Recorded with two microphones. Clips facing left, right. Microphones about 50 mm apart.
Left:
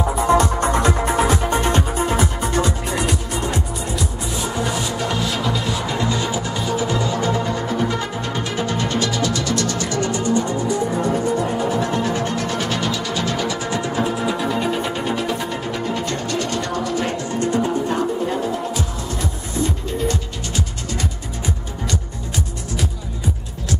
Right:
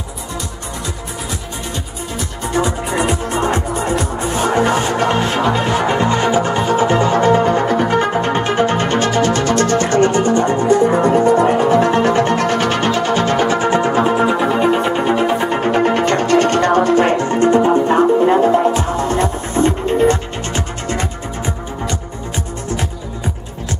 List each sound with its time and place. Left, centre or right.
0.3 s music: left
2.4 s music: centre
2.9 s music: right